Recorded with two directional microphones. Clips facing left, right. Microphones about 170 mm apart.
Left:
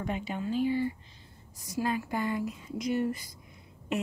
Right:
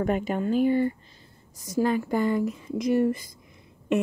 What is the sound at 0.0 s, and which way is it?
Speech, 50° right (ahead or behind).